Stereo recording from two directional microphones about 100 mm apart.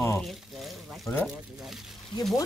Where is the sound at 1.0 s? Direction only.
20° left (ahead or behind).